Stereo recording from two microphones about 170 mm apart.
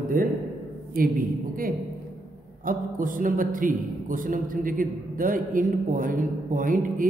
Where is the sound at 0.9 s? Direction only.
55° right (ahead or behind).